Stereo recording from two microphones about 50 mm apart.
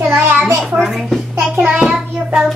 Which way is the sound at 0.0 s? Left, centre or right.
Right.